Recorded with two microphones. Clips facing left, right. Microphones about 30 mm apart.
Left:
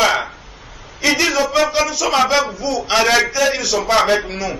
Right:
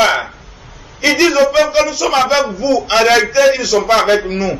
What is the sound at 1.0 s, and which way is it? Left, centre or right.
A man's voice, centre.